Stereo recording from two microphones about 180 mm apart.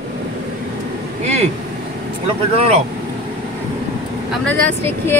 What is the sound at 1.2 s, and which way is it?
Speech, 35° right (ahead or behind).